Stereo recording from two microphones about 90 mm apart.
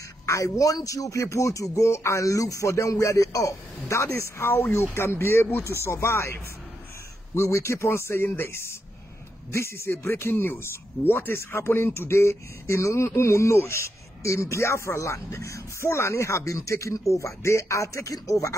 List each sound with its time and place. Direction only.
0.3 s speech: 40° left (ahead or behind)